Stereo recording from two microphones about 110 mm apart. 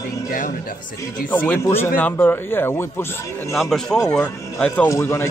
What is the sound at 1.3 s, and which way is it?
Speech, 20° left (ahead or behind).